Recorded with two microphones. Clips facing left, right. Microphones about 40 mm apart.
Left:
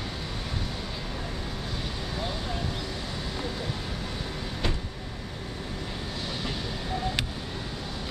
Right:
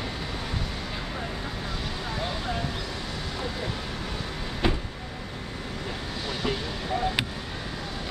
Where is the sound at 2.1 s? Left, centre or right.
Centre.